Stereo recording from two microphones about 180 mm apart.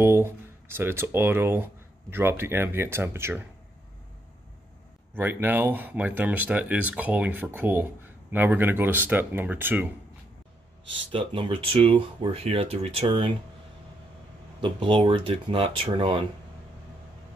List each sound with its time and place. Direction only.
0.0 s speech: 15° right (ahead or behind)
5.1 s speech: 10° right (ahead or behind)
11.1 s speech: 30° right (ahead or behind)
14.6 s speech: 30° right (ahead or behind)